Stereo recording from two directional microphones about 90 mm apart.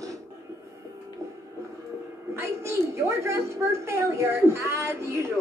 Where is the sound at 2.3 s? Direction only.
30° right (ahead or behind).